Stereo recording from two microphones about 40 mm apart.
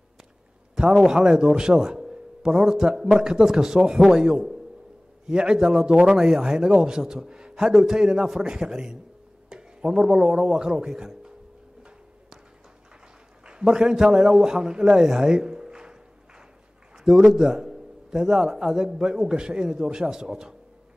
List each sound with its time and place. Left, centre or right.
0.7 s a man's voice: centre
13.5 s a man's voice: centre
14.9 s a sound: centre
17.3 s a man's voice: centre